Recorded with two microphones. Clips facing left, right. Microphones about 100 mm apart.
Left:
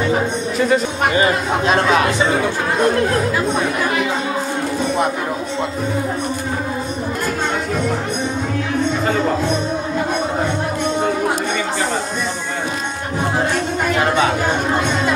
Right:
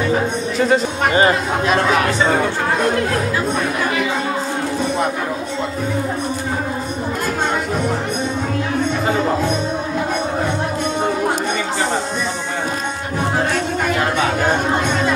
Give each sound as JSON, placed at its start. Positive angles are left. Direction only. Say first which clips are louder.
{"t": 0.6, "sound": "speech", "louder": "even", "side_deg": -30}
{"t": 1.7, "sound": "speech", "louder": "left 1 dB", "side_deg": 25}